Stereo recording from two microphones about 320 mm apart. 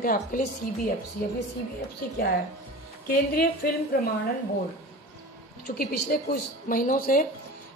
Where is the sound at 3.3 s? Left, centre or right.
Left.